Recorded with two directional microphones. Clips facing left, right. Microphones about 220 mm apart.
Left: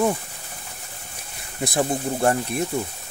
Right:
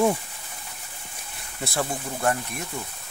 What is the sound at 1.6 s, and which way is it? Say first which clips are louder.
Speech: left 5 dB; 15° left (ahead or behind).